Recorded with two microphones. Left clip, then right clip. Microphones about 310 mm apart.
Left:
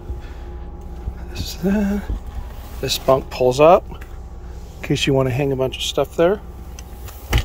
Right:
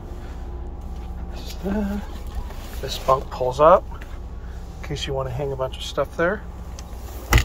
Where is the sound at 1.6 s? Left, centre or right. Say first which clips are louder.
Left 6 dB; left.